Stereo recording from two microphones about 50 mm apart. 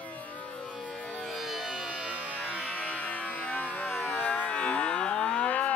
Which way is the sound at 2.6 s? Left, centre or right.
Left.